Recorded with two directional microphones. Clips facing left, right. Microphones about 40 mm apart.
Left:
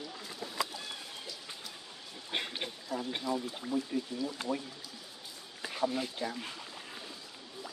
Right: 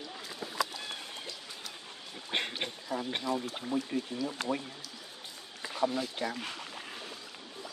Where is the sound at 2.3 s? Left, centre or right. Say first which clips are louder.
Right 3 dB; right.